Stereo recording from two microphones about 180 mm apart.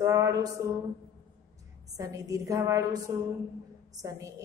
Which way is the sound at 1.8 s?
20° right (ahead or behind).